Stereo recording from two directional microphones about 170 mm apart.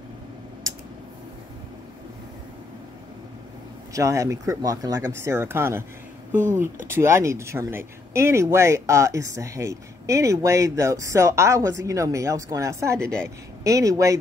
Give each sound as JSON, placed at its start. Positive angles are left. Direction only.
{"t": 3.9, "sound": "speech", "side_deg": -20}
{"t": 6.9, "sound": "speech", "side_deg": -15}